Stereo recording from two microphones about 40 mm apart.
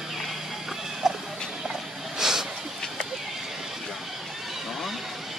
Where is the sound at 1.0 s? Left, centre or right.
Centre.